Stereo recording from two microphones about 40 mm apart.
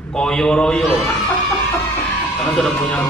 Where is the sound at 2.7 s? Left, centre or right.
Left.